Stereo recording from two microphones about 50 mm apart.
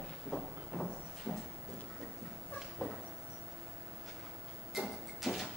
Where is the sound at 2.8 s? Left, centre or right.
Left.